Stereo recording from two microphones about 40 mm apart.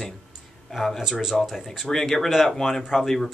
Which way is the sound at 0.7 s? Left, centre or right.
Centre.